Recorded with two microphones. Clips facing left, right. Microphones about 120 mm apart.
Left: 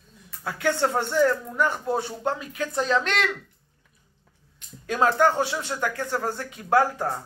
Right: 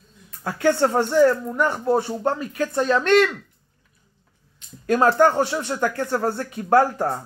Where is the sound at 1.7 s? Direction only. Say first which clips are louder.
Right 6 dB; 45° right (ahead or behind).